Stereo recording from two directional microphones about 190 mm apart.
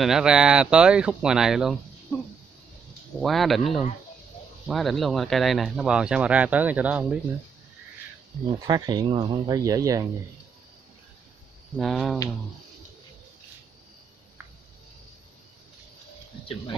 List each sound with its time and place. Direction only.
0.0 s speech: 5° right (ahead or behind)
3.2 s speech: centre (ahead or behind)
8.6 s speech: 20° right (ahead or behind)
11.7 s speech: centre (ahead or behind)